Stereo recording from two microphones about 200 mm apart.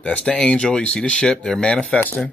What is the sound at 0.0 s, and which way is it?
Speech, 5° left (ahead or behind).